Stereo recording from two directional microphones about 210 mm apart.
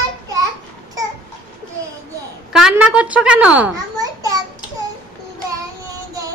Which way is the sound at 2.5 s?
5° right (ahead or behind).